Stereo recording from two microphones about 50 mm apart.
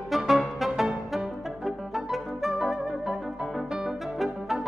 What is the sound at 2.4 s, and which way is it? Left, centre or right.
Music, centre.